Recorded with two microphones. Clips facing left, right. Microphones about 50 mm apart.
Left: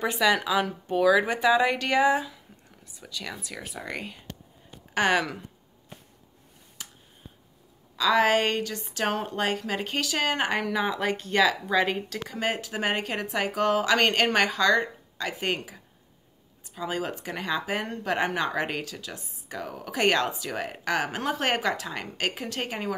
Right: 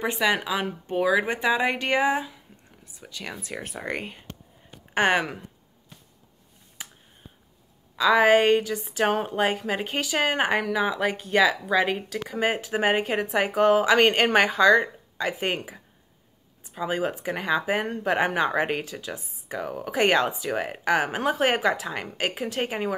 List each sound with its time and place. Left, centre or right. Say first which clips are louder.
0.0 s speech: left 1 dB; right
3.6 s speech: right 3 dB; right
7.9 s speech: right 4 dB; centre